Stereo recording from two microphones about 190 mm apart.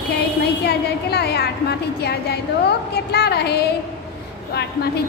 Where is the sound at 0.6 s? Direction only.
60° left (ahead or behind).